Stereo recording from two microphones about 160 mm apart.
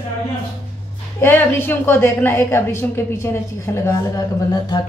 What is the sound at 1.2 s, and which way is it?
A woman's voice, 15° left (ahead or behind).